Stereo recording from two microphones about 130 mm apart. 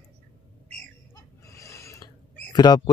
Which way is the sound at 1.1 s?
25° left (ahead or behind).